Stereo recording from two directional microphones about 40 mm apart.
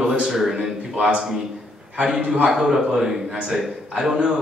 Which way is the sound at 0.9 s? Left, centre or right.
Right.